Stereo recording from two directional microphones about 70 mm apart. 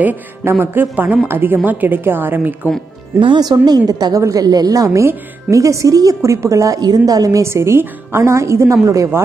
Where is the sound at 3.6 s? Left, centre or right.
Right.